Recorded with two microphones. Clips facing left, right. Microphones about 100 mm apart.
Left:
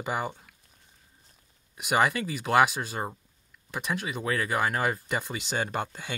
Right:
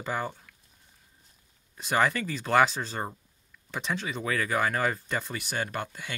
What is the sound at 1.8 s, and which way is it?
Speech, 15° left (ahead or behind).